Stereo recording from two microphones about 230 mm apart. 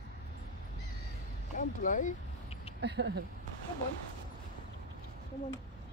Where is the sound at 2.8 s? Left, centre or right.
Right.